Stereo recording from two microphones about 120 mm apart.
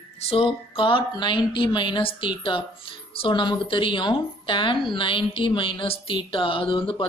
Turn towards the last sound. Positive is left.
turn(degrees=45)  # may be behind; listen again after turning